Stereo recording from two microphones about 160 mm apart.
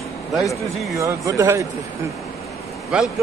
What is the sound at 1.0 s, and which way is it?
Speech, 20° right (ahead or behind).